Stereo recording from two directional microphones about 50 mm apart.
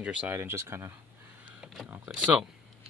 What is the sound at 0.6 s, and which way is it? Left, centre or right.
Speech, right.